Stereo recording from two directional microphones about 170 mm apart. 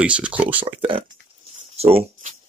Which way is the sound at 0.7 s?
30° right (ahead or behind).